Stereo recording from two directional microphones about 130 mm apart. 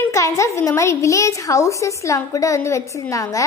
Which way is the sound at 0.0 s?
25° left (ahead or behind).